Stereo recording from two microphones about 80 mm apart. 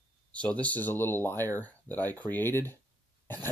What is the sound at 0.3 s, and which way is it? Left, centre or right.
Speech, centre.